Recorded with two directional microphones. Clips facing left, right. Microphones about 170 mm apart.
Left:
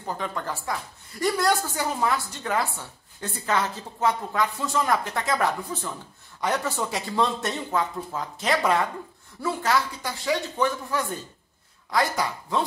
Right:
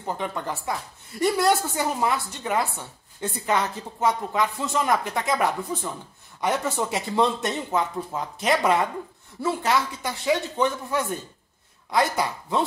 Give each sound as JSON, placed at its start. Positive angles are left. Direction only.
{"t": 0.0, "sound": "speech", "side_deg": -20}